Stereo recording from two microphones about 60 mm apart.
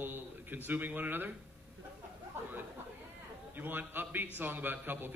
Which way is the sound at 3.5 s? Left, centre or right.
Right.